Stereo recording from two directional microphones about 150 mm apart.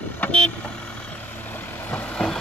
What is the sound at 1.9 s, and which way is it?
Vehicle, 10° left (ahead or behind).